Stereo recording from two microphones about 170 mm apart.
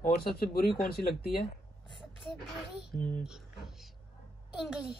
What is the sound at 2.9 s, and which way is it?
Speech, 50° left (ahead or behind).